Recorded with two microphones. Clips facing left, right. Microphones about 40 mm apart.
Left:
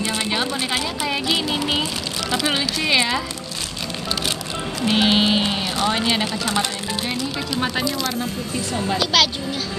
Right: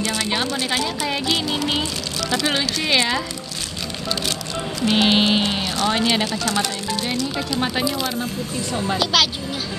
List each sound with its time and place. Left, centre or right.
0.0 s speech: left
0.3 s a woman's voice: centre
5.0 s a woman's voice: centre
6.2 s speech: centre
7.6 s a woman's voice: centre